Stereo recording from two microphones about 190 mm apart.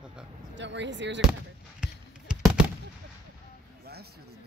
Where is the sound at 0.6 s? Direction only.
70° right (ahead or behind).